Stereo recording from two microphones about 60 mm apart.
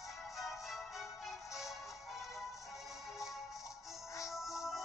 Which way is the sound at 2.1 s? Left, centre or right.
Centre.